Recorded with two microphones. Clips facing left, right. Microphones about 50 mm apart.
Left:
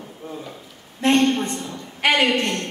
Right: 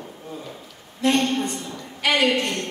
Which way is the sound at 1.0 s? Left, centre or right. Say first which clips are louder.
Left 3 dB; left.